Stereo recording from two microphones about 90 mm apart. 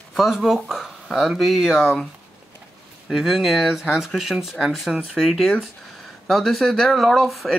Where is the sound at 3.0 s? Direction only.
5° right (ahead or behind).